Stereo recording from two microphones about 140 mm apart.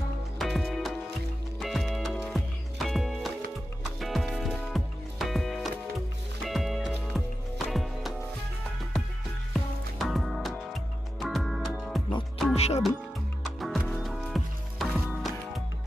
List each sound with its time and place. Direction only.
0.4 s music: centre (ahead or behind)
9.5 s music: centre (ahead or behind)
12.5 s music: 50° left (ahead or behind)
13.6 s music: centre (ahead or behind)